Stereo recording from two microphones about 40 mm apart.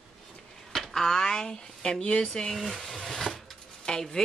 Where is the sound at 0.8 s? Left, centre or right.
Centre.